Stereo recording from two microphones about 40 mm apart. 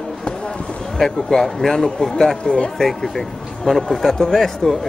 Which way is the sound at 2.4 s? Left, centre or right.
Left.